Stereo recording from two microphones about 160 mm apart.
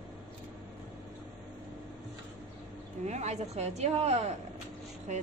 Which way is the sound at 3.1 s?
45° right (ahead or behind).